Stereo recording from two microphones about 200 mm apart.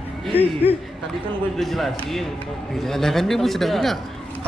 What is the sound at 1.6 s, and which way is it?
Speech, centre (ahead or behind).